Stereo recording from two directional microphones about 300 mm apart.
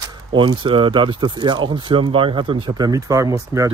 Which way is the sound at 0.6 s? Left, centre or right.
Centre.